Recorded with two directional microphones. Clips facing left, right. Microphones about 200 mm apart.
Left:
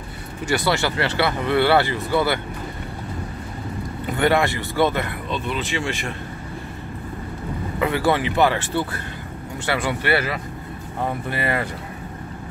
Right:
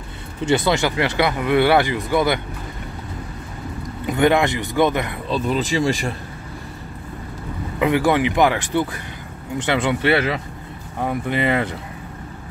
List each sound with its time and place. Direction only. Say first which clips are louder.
0.5 s speech: right 3 dB; 20° right (ahead or behind)
4.0 s speech: right 3 dB; 15° right (ahead or behind)
5.3 s speech: right 6 dB; 40° right (ahead or behind)
7.8 s speech: right 3 dB; 15° right (ahead or behind)